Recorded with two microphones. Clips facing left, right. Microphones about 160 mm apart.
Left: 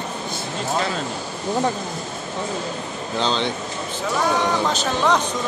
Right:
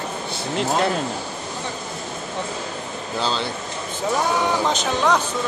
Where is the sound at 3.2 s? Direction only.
5° right (ahead or behind).